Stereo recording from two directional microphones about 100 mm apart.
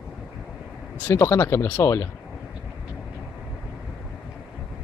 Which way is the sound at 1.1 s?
30° left (ahead or behind).